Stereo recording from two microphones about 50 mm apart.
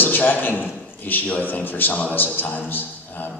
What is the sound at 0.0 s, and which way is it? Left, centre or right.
A man's voice, left.